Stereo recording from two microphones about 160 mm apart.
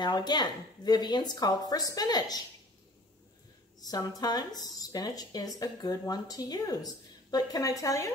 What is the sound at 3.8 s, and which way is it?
A woman's voice, 25° left (ahead or behind).